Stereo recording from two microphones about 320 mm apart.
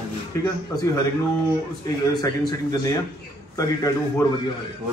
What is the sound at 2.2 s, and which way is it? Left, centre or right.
Speech, centre.